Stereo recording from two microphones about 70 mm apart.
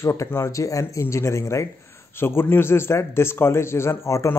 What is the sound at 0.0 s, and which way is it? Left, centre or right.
A man's voice, left.